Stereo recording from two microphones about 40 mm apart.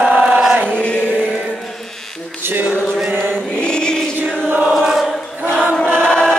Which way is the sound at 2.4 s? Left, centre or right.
Right.